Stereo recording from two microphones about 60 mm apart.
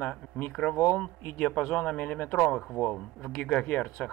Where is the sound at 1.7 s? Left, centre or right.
Left.